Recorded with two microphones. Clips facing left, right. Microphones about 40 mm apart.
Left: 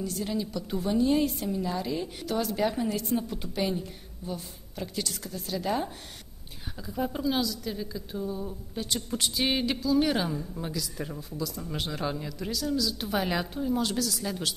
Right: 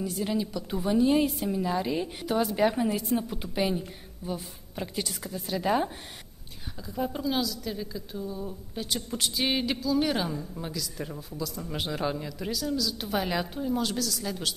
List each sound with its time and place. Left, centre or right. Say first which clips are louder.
0.0 s a woman's voice: right 2 dB; centre
6.9 s speech: left 1 dB; centre
8.2 s a woman's voice: left 2 dB; centre
8.5 s speech: even; centre